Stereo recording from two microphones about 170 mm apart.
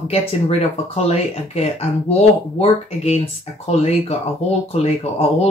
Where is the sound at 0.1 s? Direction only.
35° left (ahead or behind).